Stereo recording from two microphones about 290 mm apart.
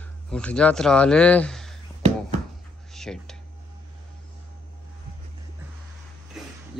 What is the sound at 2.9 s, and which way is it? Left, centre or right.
Speech, centre.